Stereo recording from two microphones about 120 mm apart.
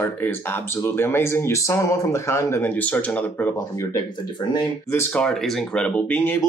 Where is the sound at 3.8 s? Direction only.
30° left (ahead or behind).